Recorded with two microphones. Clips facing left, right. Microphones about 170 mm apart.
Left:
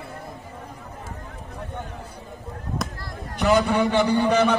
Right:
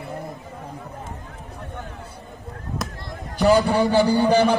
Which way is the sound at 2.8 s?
Centre (ahead or behind).